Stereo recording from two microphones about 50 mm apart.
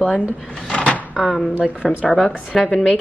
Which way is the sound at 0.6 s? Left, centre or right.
Left.